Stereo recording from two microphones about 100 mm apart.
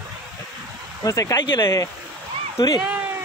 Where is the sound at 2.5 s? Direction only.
45° left (ahead or behind).